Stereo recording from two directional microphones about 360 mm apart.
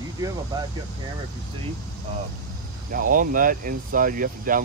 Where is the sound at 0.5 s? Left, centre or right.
Centre.